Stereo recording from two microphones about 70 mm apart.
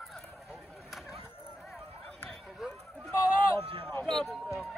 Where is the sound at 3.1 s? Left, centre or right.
Left.